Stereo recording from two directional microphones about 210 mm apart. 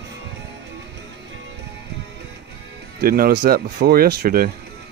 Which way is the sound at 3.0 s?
45° right (ahead or behind).